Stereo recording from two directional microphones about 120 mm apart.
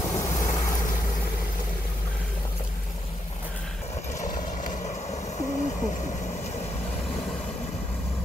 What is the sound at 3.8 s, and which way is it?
Hoot, 75° left (ahead or behind).